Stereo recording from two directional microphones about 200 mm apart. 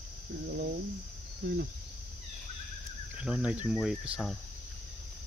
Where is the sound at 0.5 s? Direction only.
55° right (ahead or behind).